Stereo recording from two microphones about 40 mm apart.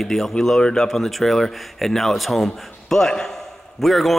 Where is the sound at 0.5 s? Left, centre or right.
Centre.